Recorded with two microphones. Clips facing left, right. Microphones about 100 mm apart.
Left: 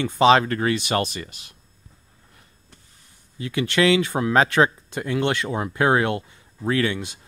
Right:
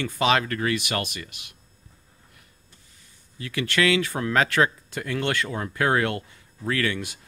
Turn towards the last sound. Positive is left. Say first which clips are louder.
# left 4 dB
turn(degrees=20)  # may be behind; listen again after turning